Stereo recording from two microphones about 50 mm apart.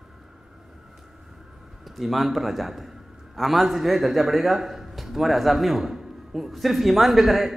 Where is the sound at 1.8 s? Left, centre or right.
Centre.